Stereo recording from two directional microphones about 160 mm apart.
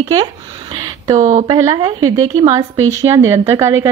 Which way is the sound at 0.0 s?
25° right (ahead or behind).